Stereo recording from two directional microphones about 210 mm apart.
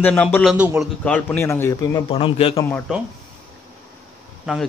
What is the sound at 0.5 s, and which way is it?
Speech, 5° right (ahead or behind).